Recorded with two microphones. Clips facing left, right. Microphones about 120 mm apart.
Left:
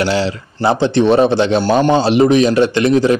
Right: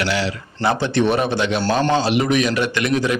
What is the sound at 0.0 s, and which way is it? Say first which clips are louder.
Speech: left 6 dB; 30° left (ahead or behind).